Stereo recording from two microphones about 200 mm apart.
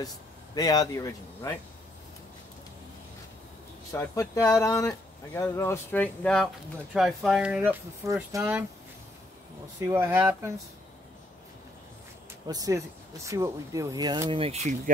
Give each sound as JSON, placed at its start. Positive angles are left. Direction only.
{"t": 0.6, "sound": "speech", "side_deg": 20}
{"t": 3.9, "sound": "speech", "side_deg": 15}
{"t": 9.8, "sound": "speech", "side_deg": -15}
{"t": 12.4, "sound": "speech", "side_deg": -20}